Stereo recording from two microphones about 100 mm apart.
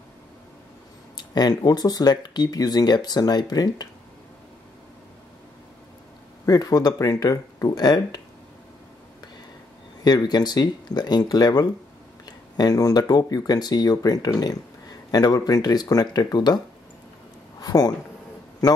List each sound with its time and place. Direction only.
1.1 s speech: 45° left (ahead or behind)
6.4 s speech: 40° left (ahead or behind)
10.0 s speech: 45° left (ahead or behind)